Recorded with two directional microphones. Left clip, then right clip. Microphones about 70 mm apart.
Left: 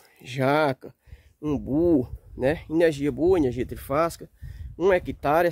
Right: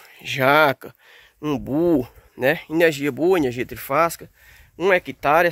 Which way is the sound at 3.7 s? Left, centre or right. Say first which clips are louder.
Right 5 dB; left.